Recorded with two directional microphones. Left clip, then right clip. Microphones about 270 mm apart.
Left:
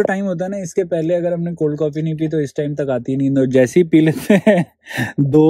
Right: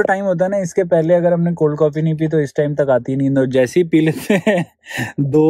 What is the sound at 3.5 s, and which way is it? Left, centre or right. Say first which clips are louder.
Speech: left 3 dB; left.